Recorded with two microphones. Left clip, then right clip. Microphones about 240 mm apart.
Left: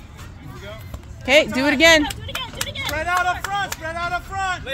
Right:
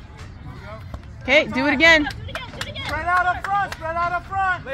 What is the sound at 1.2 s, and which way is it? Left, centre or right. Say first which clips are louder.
Speech: left 2 dB; centre.